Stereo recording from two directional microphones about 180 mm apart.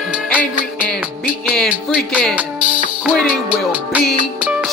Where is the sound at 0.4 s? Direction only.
5° left (ahead or behind).